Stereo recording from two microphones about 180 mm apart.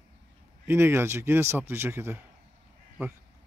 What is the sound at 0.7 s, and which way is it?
A man's voice, 15° right (ahead or behind).